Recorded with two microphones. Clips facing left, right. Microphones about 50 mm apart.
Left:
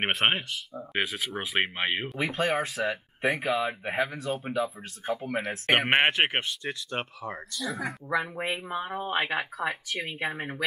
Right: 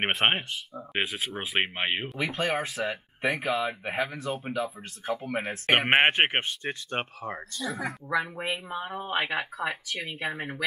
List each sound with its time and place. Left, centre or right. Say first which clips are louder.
0.1 s speech: even; right
0.9 s speech: even; centre
2.1 s speech: left 2 dB; centre
5.3 s speech: even; centre
6.1 s speech: right 1 dB; right
7.6 s speech: even; centre
8.1 s speech: even; centre